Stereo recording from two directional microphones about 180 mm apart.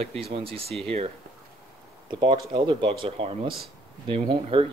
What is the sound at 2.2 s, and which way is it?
Speech, 25° right (ahead or behind).